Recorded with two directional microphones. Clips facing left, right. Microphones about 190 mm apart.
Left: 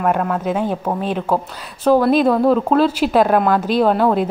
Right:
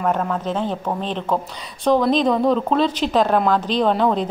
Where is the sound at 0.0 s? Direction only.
5° left (ahead or behind).